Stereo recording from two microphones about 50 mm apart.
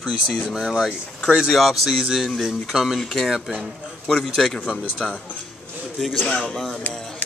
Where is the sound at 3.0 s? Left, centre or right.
Centre.